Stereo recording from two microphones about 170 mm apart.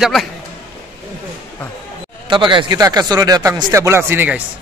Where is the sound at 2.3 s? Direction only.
30° right (ahead or behind); by 4.4 s 10° right (ahead or behind).